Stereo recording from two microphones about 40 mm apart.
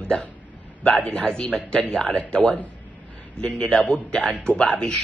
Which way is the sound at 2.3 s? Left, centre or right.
Left.